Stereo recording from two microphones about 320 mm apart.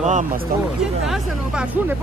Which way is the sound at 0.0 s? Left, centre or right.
Right.